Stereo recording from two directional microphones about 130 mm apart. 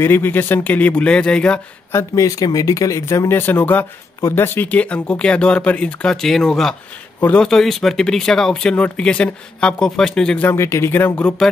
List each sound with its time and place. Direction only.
0.0 s speech: 15° left (ahead or behind)
1.9 s speech: 25° left (ahead or behind); by 10.5 s 5° left (ahead or behind)
10.5 s speech: 20° left (ahead or behind)